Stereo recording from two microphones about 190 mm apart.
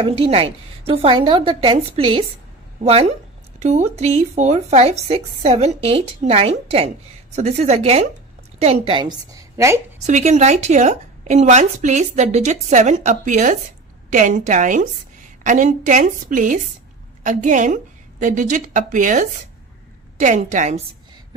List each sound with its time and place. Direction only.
0.0 s a woman's voice: 30° right (ahead or behind)
10.0 s a woman's voice: 40° right (ahead or behind)